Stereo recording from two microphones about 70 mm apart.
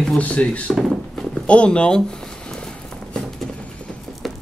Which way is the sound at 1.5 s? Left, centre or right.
Centre.